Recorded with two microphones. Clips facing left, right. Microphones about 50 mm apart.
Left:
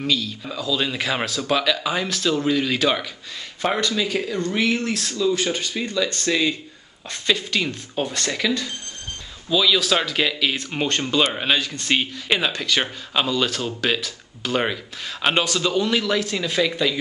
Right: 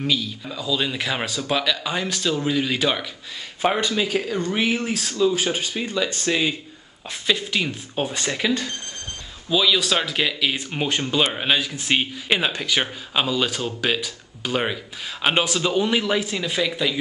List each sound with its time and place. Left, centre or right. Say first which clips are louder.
0.0 s speech: even; centre
3.6 s speech: right 1 dB; centre
9.5 s speech: left 1 dB; centre
15.2 s speech: even; centre